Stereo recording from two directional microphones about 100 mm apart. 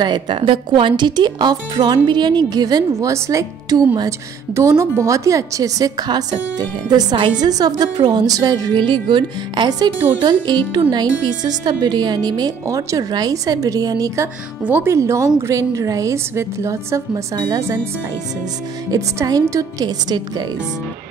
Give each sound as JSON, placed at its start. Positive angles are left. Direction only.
{"t": 0.0, "sound": "a woman's voice", "side_deg": -50}
{"t": 8.8, "sound": "a woman's voice", "side_deg": -50}
{"t": 14.6, "sound": "speech", "side_deg": -20}
{"t": 17.1, "sound": "a woman's voice", "side_deg": -40}
{"t": 18.9, "sound": "a woman's voice", "side_deg": -35}